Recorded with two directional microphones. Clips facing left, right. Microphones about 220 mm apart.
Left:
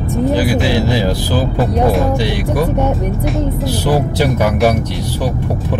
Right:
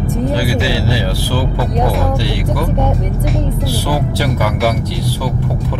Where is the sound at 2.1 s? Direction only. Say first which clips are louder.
Left 2 dB; 15° left (ahead or behind).